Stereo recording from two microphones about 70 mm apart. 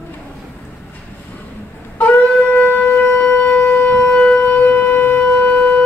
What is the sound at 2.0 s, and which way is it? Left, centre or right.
Shofar, left.